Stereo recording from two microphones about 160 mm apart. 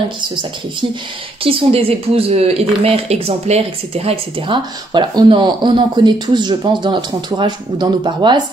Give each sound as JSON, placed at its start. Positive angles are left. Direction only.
{"t": 1.4, "sound": "speech", "side_deg": -35}